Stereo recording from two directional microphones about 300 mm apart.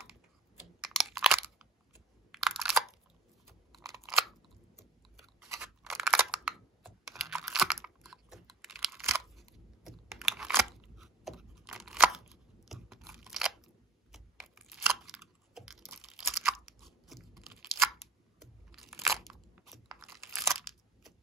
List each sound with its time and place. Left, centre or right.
0.9 s crunch: centre
3.7 s scissors: centre
5.2 s a sound: centre
12.6 s crunch: centre
14.1 s a sound: centre
18.4 s crunch: centre